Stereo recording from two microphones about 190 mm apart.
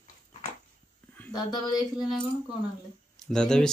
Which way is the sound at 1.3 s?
20° left (ahead or behind).